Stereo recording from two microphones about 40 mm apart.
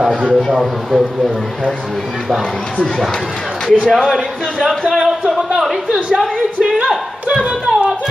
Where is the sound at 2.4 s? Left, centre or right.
Centre.